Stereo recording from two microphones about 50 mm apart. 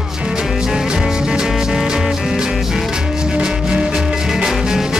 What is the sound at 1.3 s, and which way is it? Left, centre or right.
Music, centre.